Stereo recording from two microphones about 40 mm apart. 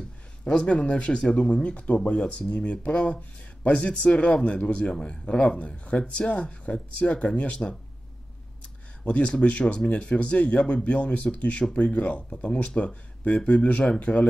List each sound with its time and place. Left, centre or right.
0.5 s speech: left
1.2 s speech: centre
1.5 s speech: left
4.8 s speech: left
9.0 s speech: left